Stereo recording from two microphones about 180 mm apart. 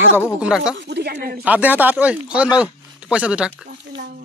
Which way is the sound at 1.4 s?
10° right (ahead or behind).